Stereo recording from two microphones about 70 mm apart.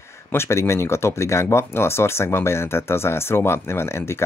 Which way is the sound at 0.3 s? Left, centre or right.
Left.